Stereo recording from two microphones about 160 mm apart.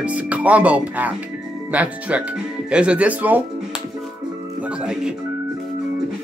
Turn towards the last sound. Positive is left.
turn(degrees=-5)  # may be behind; listen again after turning